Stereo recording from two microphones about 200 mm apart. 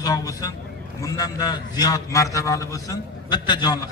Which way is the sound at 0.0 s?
20° left (ahead or behind).